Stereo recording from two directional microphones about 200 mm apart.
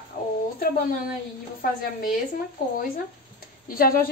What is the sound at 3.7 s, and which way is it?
Speech, 45° left (ahead or behind).